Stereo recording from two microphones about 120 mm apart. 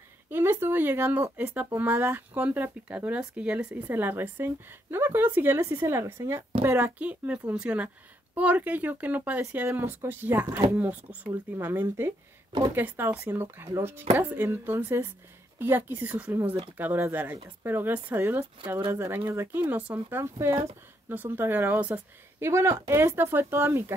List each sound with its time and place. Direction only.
0.3 s a woman's voice: 20° right (ahead or behind)